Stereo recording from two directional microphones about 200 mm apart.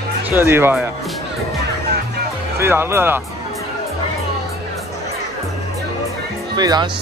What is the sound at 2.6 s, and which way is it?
Speech, 10° right (ahead or behind).